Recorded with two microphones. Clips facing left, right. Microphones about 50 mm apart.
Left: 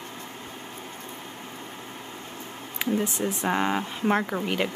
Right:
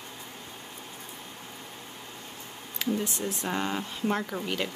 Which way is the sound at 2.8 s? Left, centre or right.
Left.